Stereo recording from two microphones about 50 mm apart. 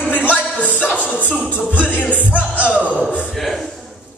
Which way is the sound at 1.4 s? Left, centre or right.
Left.